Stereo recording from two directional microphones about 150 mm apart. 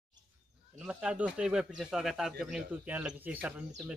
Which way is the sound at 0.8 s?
5° right (ahead or behind).